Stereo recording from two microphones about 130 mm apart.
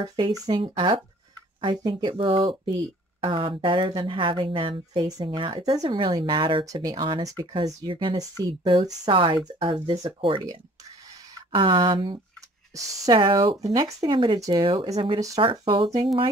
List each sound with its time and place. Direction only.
0.0 s speech: 30° right (ahead or behind)
6.6 s speech: 25° right (ahead or behind)
11.5 s speech: 40° right (ahead or behind)
15.1 s speech: 25° right (ahead or behind)
15.6 s speech: 40° right (ahead or behind)